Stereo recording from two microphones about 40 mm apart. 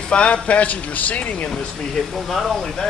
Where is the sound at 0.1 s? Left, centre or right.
Left.